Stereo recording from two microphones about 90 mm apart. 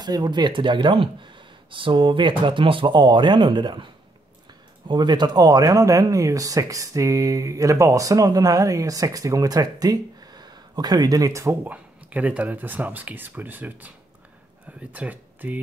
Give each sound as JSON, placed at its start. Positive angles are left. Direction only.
{"t": 0.0, "sound": "speech", "side_deg": -50}
{"t": 11.6, "sound": "speech", "side_deg": -20}